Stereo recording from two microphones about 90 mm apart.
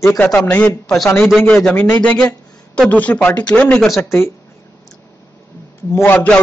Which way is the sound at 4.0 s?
30° left (ahead or behind).